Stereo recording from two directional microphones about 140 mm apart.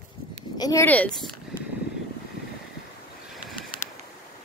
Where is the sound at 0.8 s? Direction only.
10° left (ahead or behind).